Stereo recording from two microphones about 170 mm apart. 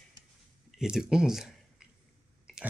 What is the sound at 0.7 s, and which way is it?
Speech, 5° right (ahead or behind).